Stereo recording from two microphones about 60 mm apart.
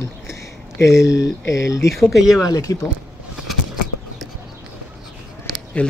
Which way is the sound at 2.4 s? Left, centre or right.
Left.